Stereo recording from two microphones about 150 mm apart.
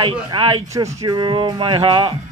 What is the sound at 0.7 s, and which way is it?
A man's voice, 20° right (ahead or behind).